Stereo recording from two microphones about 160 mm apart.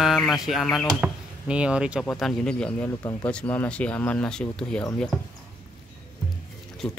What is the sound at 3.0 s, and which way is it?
Speech, 20° left (ahead or behind).